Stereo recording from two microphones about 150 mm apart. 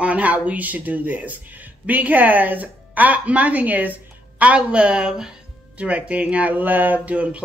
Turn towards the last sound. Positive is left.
turn(degrees=-10)  # may be behind; listen again after turning